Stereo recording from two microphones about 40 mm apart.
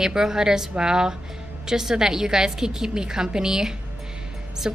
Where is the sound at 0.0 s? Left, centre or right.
Centre.